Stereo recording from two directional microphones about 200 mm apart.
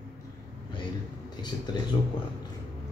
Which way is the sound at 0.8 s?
20° left (ahead or behind).